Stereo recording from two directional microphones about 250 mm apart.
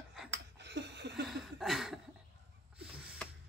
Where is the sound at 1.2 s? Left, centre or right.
Centre.